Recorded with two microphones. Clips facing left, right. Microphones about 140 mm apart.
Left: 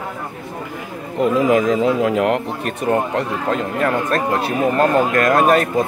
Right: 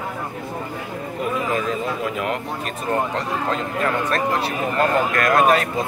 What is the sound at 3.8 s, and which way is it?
Speech, 35° left (ahead or behind).